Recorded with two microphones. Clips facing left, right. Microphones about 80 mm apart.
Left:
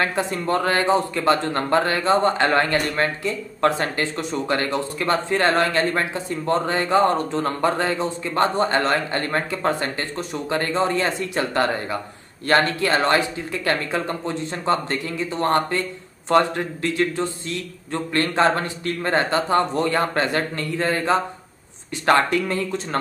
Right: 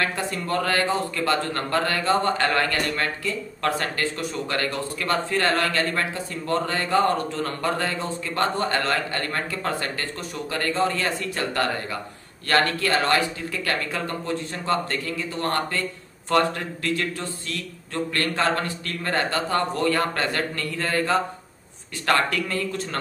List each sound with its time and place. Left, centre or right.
0.0 s a man's voice: left